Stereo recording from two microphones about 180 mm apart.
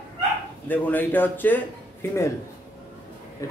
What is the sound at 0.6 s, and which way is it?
Speech, 10° left (ahead or behind).